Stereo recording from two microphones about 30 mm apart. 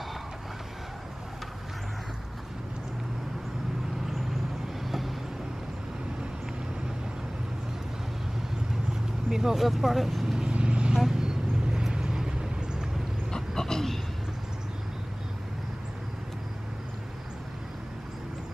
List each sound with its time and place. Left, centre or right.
4.8 s vehicle: centre
9.3 s speech: centre
9.6 s speech: centre
10.5 s vehicle: right
11.0 s vehicle: centre
13.3 s a sound: centre